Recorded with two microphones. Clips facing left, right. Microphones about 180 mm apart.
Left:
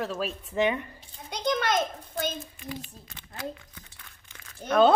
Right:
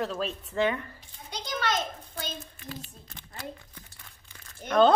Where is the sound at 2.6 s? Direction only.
15° left (ahead or behind).